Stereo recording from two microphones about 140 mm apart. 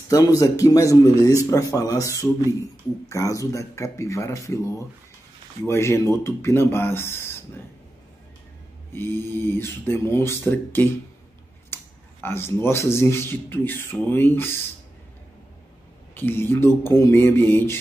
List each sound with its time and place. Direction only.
0.1 s a man's voice: 25° left (ahead or behind)
8.9 s a man's voice: 15° left (ahead or behind)
16.2 s a man's voice: 15° left (ahead or behind)